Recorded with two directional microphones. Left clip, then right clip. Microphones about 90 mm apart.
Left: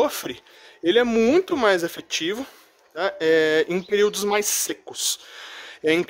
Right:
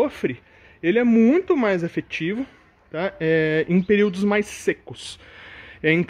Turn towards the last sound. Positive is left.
turn(degrees=15)  # may be behind; listen again after turning